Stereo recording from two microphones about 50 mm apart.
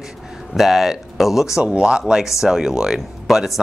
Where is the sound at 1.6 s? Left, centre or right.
Right.